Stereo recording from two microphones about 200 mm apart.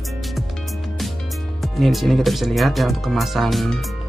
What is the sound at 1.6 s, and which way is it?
Speech, centre (ahead or behind).